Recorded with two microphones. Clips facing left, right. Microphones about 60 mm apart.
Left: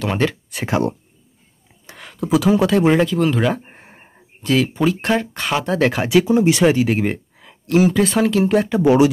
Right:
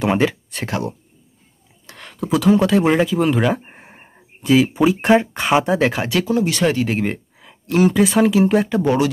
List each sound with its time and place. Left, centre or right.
0.0 s speech: centre
1.9 s speech: centre
5.8 s speech: centre
6.0 s speech: centre
6.9 s speech: centre
8.8 s speech: centre